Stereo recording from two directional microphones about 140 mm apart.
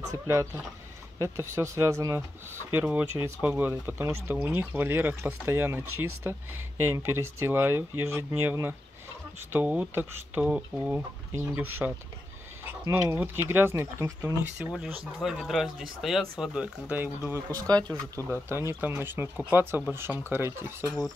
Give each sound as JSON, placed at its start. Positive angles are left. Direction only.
{"t": 0.1, "sound": "speech", "side_deg": -20}
{"t": 12.9, "sound": "speech", "side_deg": -15}
{"t": 14.6, "sound": "speech", "side_deg": -5}
{"t": 17.8, "sound": "speech", "side_deg": 10}
{"t": 18.5, "sound": "speech", "side_deg": -20}